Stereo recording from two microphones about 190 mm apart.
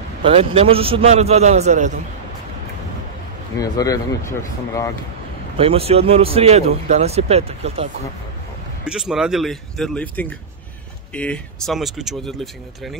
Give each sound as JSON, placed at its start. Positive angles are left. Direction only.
{"t": 0.2, "sound": "speech", "side_deg": -30}
{"t": 3.5, "sound": "speech", "side_deg": 20}
{"t": 5.6, "sound": "speech", "side_deg": -30}
{"t": 8.8, "sound": "speech", "side_deg": -5}